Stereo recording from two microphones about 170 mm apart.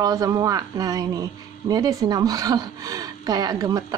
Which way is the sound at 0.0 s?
20° right (ahead or behind).